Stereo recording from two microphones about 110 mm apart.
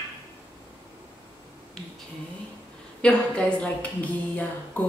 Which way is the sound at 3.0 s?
10° left (ahead or behind).